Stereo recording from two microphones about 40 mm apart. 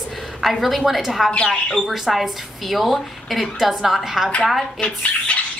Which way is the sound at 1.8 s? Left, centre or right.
Centre.